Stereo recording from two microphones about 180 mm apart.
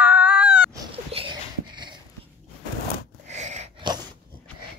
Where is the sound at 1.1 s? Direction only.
30° right (ahead or behind).